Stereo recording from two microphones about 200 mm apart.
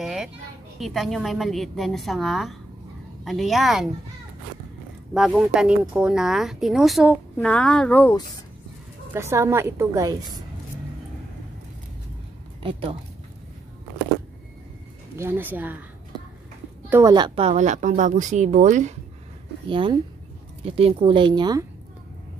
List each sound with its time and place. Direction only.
0.0 s children playing: centre (ahead or behind)
0.7 s speech: centre (ahead or behind)
5.1 s speech: 5° right (ahead or behind)
9.1 s a woman's voice: 15° right (ahead or behind)
15.1 s a woman's voice: 10° right (ahead or behind)
16.9 s a woman's voice: 20° right (ahead or behind); by 18.9 s 40° right (ahead or behind)
19.7 s speech: 25° right (ahead or behind)